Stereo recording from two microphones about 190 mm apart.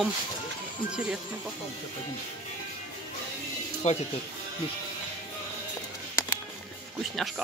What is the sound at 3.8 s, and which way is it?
Speech, 35° left (ahead or behind).